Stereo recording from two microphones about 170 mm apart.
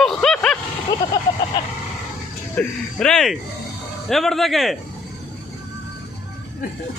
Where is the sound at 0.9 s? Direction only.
20° left (ahead or behind).